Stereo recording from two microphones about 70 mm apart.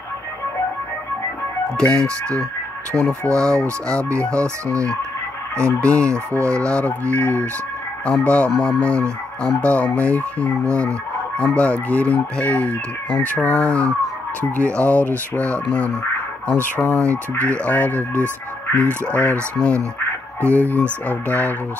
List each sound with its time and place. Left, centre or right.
1.8 s speech: centre
5.6 s speech: centre
6.1 s fowl: right
6.5 s speech: centre